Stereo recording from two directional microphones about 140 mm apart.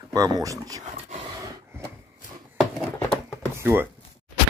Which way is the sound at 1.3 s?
25° right (ahead or behind).